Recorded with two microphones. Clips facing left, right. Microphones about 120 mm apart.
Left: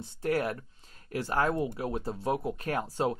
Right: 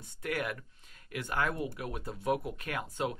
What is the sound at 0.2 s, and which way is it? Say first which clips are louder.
Speech: left 6 dB; 35° left (ahead or behind).